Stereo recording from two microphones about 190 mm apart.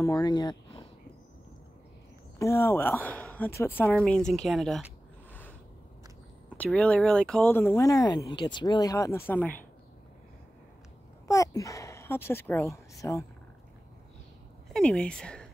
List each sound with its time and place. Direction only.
0.0 s speech: 20° left (ahead or behind)
2.3 s speech: 15° left (ahead or behind)
6.5 s speech: 5° left (ahead or behind)
11.2 s speech: 15° left (ahead or behind)
14.7 s speech: 5° left (ahead or behind)